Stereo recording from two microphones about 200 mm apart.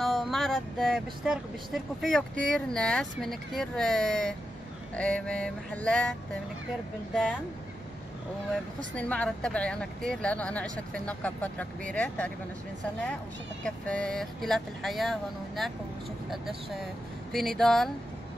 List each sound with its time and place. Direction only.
0.0 s speech: centre (ahead or behind)
8.9 s speech: 5° left (ahead or behind)
13.7 s speech: 5° left (ahead or behind)